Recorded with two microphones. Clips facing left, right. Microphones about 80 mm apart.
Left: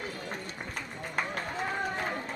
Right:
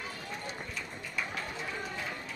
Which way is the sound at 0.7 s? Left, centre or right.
Left.